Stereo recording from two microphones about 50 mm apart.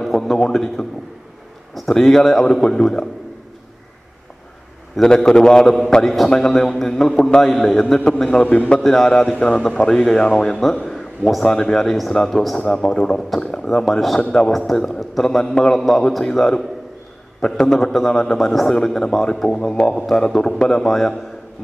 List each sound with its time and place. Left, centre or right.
0.0 s a man's voice: centre
5.0 s a man's voice: centre
8.8 s a man's voice: centre
10.9 s a sound: centre
11.5 s a man's voice: centre
13.4 s a sound: centre
13.7 s a man's voice: centre
14.9 s a man's voice: centre